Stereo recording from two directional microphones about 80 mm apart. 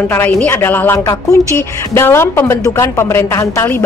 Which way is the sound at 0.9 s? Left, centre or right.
Left.